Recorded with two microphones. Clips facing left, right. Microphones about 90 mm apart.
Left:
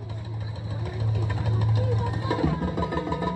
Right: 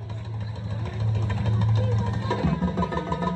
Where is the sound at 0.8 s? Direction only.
15° left (ahead or behind).